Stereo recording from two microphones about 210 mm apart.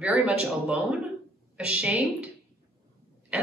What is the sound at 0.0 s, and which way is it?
Speech, 5° right (ahead or behind).